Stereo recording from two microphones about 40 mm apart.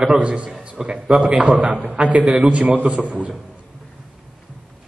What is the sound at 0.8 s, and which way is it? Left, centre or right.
Speech, centre.